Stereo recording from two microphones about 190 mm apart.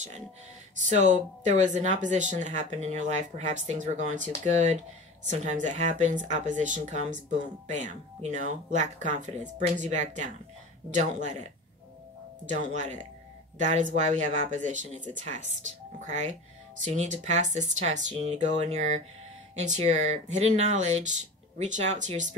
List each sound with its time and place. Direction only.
0.8 s speech: 40° right (ahead or behind)